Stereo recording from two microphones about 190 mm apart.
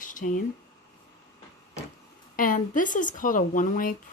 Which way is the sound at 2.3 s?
45° left (ahead or behind).